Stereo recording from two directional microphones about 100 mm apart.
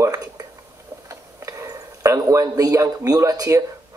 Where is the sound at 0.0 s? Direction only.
35° right (ahead or behind).